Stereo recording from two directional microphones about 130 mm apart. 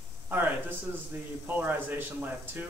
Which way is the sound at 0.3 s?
15° right (ahead or behind).